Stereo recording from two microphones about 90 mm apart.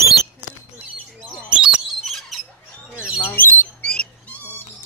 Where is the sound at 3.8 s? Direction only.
10° left (ahead or behind).